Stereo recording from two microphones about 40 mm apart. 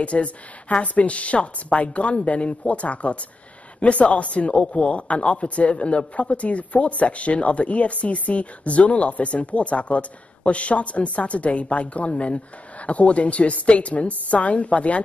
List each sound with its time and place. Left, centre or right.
0.0 s speech: left